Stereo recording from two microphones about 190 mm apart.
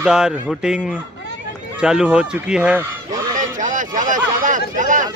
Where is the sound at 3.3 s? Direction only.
40° right (ahead or behind).